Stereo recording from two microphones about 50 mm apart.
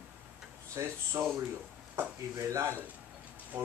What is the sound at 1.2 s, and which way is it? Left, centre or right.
Speech, right.